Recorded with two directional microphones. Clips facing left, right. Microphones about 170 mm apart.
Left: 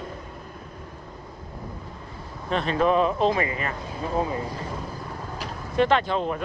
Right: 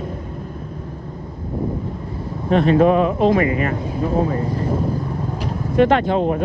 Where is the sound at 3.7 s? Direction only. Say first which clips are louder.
Right 8 dB; 50° right (ahead or behind).